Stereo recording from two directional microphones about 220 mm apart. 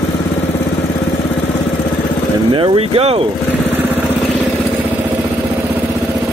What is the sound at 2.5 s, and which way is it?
Speech, 25° right (ahead or behind).